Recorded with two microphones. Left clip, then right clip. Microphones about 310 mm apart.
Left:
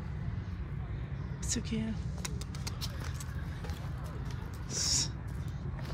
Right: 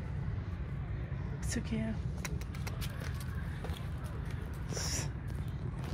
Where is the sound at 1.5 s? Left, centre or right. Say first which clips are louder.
Left 2 dB; centre.